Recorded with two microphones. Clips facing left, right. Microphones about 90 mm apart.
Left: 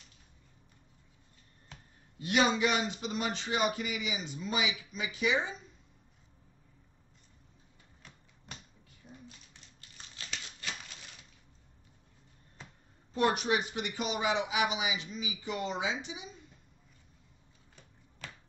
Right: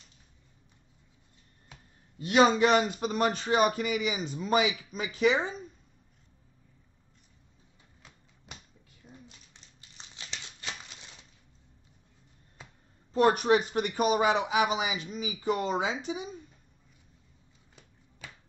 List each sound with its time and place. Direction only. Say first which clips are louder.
2.1 s speech: right 6 dB; 35° right (ahead or behind)
9.5 s a sound: even; 20° right (ahead or behind)
13.1 s speech: right 6 dB; 40° right (ahead or behind)